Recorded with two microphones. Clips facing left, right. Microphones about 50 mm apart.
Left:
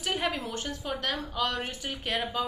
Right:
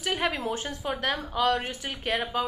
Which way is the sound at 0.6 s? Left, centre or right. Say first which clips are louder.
Right 2 dB; centre.